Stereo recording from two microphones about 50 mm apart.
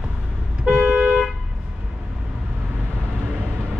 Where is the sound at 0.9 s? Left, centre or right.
Right.